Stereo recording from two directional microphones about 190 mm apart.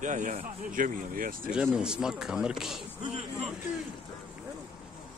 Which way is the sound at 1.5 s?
5° right (ahead or behind).